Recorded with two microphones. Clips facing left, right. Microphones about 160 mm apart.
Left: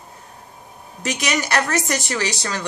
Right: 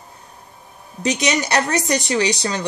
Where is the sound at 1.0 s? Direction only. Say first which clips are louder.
Right 4 dB; 20° right (ahead or behind).